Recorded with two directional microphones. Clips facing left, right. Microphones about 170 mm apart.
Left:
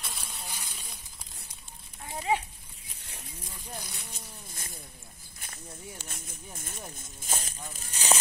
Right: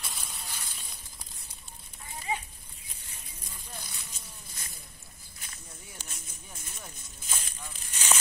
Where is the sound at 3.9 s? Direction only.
60° left (ahead or behind).